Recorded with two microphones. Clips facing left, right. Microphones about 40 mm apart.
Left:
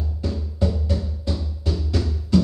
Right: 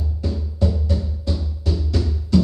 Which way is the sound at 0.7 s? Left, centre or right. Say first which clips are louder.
Right 2 dB; centre.